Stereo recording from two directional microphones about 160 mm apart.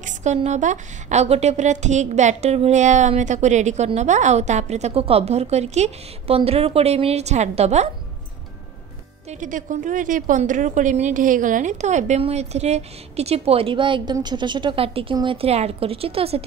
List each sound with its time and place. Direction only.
0.0 s a woman's voice: 45° right (ahead or behind)
9.3 s a woman's voice: 55° right (ahead or behind); by 16.4 s 35° right (ahead or behind)